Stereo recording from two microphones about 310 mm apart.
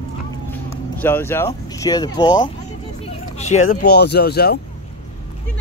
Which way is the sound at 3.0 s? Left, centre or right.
Left.